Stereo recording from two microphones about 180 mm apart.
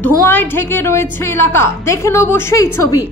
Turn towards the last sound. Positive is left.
turn(degrees=20)  # may be behind; listen again after turning